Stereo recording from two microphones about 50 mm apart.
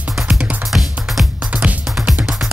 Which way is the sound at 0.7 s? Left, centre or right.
Centre.